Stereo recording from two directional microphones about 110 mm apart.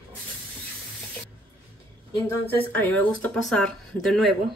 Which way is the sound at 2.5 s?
15° left (ahead or behind).